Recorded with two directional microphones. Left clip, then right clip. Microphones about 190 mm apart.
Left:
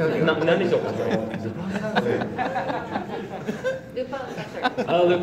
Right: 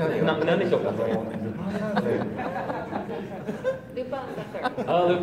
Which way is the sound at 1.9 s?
40° left (ahead or behind).